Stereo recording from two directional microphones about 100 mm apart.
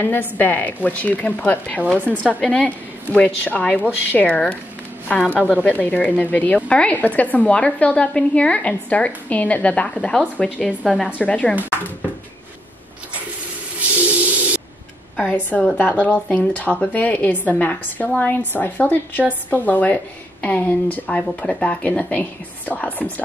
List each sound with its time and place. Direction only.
0.0 s speech: 20° left (ahead or behind)
13.7 s a sound: 15° right (ahead or behind)
15.1 s speech: 15° left (ahead or behind)